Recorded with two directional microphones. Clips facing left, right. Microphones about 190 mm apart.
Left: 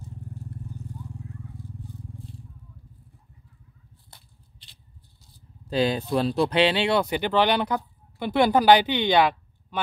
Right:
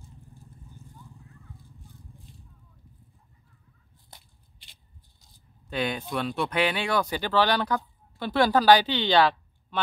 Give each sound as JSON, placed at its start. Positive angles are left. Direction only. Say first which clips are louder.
{"t": 0.5, "sound": "vehicle", "louder": "left 11 dB", "side_deg": 75}
{"t": 5.7, "sound": "speech", "louder": "left 6 dB", "side_deg": 35}